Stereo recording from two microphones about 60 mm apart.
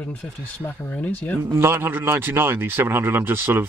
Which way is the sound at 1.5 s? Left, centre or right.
Right.